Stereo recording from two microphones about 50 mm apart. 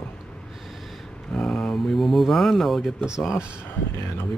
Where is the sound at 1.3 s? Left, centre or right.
Centre.